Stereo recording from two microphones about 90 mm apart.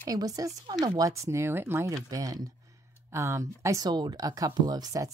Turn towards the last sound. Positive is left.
turn(degrees=-40)  # may be behind; listen again after turning